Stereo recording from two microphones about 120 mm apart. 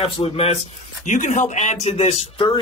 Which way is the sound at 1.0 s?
90° left.